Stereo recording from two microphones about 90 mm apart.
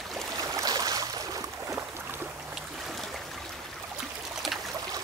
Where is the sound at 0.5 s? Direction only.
45° right (ahead or behind).